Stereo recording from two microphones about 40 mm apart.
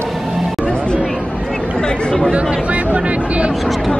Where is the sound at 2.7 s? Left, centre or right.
Right.